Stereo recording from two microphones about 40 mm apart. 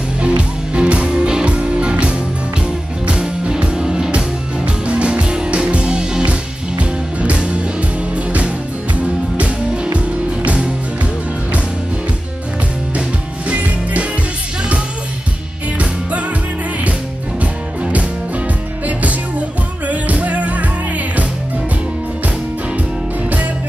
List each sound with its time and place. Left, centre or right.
0.2 s music: right
8.9 s music: right
13.5 s music: right
17.4 s music: right
19.9 s music: right